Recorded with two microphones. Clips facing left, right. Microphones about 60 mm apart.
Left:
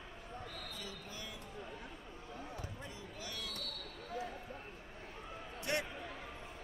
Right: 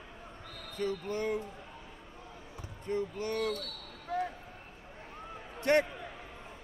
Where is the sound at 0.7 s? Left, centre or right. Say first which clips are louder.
Right 14 dB; right.